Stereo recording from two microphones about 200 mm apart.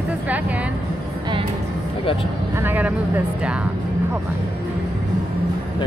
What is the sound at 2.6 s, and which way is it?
Music, 10° right (ahead or behind).